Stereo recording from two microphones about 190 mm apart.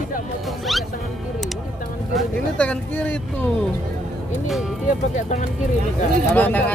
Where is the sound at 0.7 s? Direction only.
Centre (ahead or behind).